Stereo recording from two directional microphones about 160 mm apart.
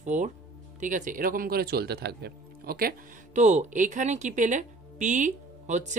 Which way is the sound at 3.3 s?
45° right (ahead or behind).